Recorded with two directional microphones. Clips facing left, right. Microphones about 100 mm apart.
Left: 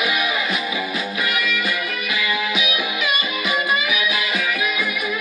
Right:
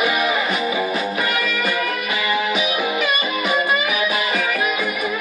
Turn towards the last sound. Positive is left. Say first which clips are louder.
# right 2 dB
turn(degrees=-40)  # may be behind; listen again after turning